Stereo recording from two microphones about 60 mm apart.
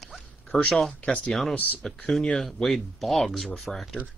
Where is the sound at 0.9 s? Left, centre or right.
Centre.